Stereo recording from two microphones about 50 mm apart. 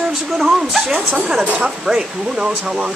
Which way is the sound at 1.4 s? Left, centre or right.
Right.